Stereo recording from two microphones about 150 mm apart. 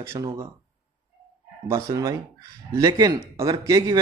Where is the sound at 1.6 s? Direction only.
20° right (ahead or behind).